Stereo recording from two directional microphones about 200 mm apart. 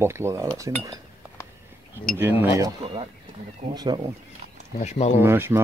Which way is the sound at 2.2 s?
10° right (ahead or behind).